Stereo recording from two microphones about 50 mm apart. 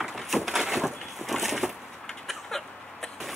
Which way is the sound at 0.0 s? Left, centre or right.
Centre.